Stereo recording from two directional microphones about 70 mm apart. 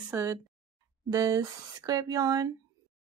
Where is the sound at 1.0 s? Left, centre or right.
Right.